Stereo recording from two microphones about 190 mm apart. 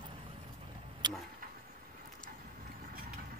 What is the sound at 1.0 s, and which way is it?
Tick-tock, 25° right (ahead or behind).